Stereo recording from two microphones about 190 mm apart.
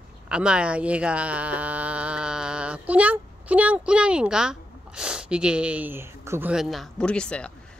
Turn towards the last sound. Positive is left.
turn(degrees=5)  # may be behind; listen again after turning